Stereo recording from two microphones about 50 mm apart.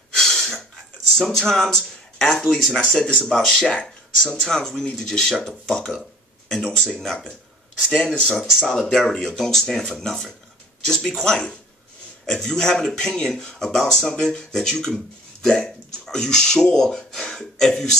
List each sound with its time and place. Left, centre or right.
0.1 s a sound: centre
1.1 s speech: centre
3.0 s speech: centre
3.3 s speech: centre
8.5 s speech: centre
8.7 s speech: centre